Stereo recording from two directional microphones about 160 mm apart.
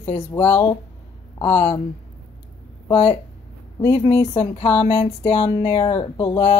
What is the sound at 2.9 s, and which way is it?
Speech, 35° left (ahead or behind).